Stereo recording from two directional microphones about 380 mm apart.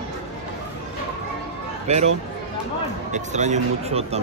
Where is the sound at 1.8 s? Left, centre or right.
Centre.